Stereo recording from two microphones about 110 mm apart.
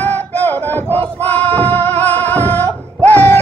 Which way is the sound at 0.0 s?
15° left (ahead or behind).